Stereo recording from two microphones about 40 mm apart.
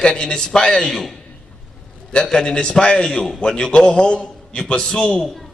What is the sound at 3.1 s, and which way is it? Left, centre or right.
Speech, centre.